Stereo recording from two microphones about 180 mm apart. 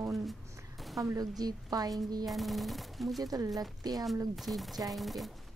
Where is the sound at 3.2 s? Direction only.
20° right (ahead or behind).